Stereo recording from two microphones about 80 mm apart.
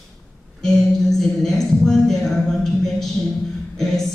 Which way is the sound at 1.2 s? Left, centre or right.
Centre.